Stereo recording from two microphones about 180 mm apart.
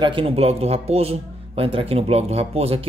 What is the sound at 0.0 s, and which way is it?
A man's voice, 30° right (ahead or behind).